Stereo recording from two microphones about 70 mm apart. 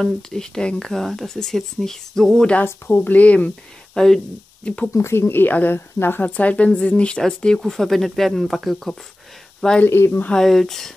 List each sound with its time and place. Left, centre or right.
0.0 s speech: centre
2.6 s speech: left
3.9 s speech: centre
4.6 s speech: centre
4.9 s speech: left; by 8.9 s centre
9.8 s speech: left
10.3 s speech: centre